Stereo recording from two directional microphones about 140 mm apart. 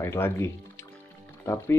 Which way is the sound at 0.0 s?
15° left (ahead or behind).